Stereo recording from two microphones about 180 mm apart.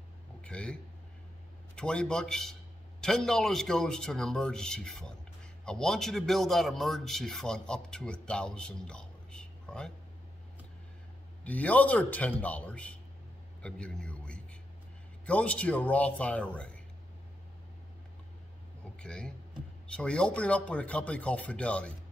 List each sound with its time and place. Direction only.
0.4 s a sound: 5° left (ahead or behind)
1.8 s a man's voice: 5° left (ahead or behind)
11.4 s speech: 10° left (ahead or behind)
13.6 s a sound: 5° left (ahead or behind)
15.2 s speech: 5° left (ahead or behind)
18.9 s speech: 5° left (ahead or behind)